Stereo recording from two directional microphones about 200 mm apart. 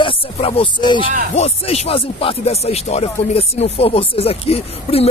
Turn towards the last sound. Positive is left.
turn(degrees=30)  # may be behind; listen again after turning